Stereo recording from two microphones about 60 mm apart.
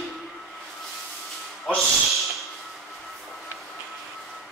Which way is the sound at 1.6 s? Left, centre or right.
Centre.